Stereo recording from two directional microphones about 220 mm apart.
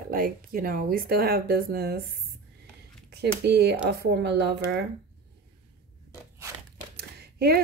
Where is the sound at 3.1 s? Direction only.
50° right (ahead or behind).